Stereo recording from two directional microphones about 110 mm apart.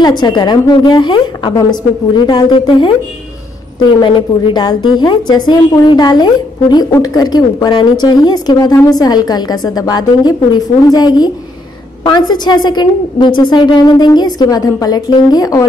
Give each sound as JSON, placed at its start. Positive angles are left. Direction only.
{"t": 0.0, "sound": "a woman's voice", "side_deg": 40}
{"t": 4.0, "sound": "a woman's voice", "side_deg": 45}